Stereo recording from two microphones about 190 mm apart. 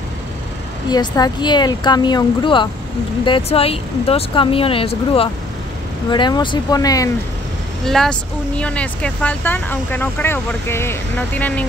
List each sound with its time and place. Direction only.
0.8 s speech: 20° left (ahead or behind)
7.8 s speech: centre (ahead or behind)